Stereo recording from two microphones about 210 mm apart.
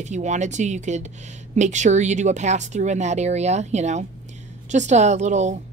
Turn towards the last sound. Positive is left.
turn(degrees=-35)  # may be behind; listen again after turning